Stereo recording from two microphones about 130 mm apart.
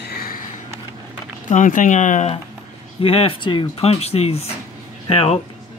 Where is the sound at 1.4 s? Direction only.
80° left.